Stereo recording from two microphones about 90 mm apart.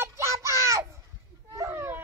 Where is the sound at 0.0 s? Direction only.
30° right (ahead or behind).